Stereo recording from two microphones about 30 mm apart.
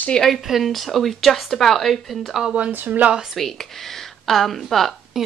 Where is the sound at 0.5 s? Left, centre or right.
Centre.